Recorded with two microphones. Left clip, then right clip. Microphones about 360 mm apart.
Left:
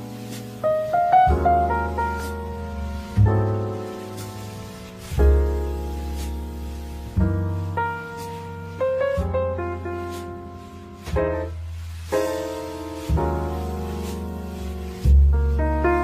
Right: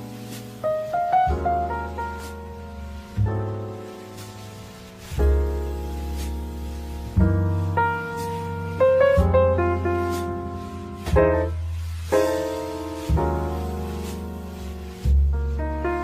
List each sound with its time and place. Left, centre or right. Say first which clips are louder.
0.6 s music: left 3 dB; left
5.1 s music: left 3 dB; left
7.2 s music: right 2 dB; right
11.1 s music: right 5 dB; right
12.1 s music: right 3 dB; right; by 14.3 s centre
15.0 s music: left 5 dB; left